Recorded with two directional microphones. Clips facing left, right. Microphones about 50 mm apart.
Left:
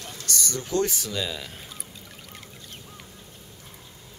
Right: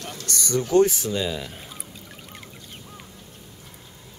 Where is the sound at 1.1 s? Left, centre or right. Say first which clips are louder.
Right 4 dB; centre.